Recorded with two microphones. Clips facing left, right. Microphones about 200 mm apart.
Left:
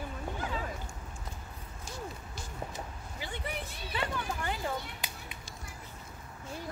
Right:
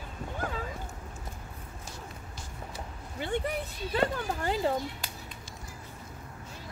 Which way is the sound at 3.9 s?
35° right (ahead or behind).